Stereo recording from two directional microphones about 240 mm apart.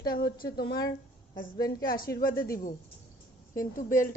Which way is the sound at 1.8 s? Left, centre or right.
Left.